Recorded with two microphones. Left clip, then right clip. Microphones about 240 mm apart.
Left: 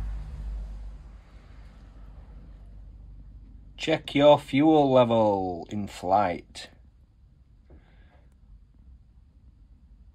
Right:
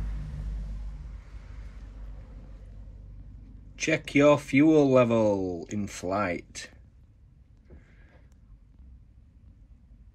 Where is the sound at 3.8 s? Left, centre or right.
Centre.